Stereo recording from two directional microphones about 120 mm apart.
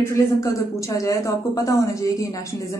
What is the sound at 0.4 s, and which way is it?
A woman's voice, 25° left (ahead or behind).